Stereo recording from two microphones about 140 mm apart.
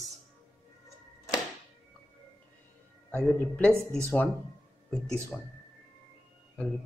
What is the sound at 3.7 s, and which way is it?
Speech, 20° right (ahead or behind).